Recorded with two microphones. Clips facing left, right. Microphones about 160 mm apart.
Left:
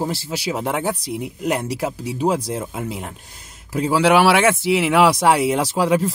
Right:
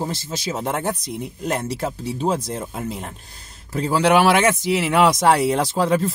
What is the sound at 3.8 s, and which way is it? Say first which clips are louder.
Speech: left 1 dB; 5° left (ahead or behind).